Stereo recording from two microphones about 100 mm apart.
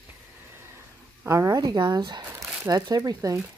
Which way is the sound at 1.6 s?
45° right (ahead or behind).